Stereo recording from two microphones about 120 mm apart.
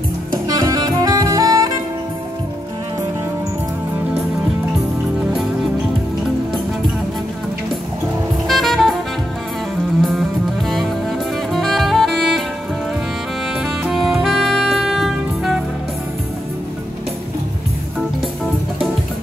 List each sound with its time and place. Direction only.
0.5 s saxophone: 30° right (ahead or behind)
8.5 s jazz: centre (ahead or behind)
10.7 s music: centre (ahead or behind)
13.6 s saxophone: 5° right (ahead or behind)